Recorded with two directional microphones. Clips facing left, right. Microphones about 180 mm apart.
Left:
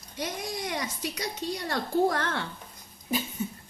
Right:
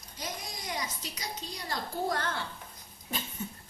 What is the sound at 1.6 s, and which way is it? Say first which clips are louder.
Speech: left 7 dB; 65° left (ahead or behind).